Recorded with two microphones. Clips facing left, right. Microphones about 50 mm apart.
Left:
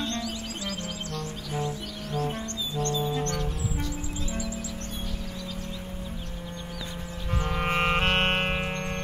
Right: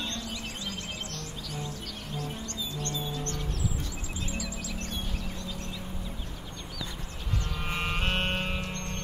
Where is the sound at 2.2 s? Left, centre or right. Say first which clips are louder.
Left 6 dB; left.